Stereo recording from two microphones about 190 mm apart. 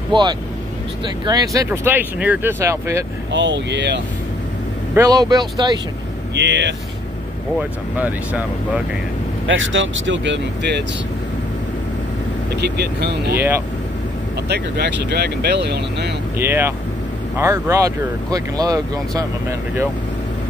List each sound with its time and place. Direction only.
0.1 s speech: 25° right (ahead or behind)
3.3 s speech: 70° right (ahead or behind)
4.9 s speech: 15° right (ahead or behind)
6.3 s speech: 65° right (ahead or behind)
7.5 s speech: 5° right (ahead or behind)
9.5 s speech: 90° right; by 10.8 s 65° right (ahead or behind)
12.5 s speech: 60° right (ahead or behind)
14.5 s speech: 60° right (ahead or behind)
16.3 s speech: 10° right (ahead or behind)